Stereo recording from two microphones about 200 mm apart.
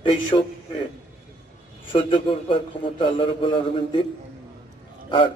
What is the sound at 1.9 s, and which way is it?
A man's voice, 25° left (ahead or behind).